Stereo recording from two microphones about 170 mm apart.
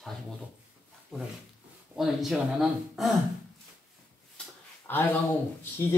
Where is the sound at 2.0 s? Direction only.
Centre (ahead or behind).